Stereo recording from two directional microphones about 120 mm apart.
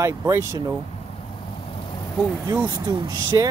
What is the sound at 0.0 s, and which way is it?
Speech, 25° right (ahead or behind).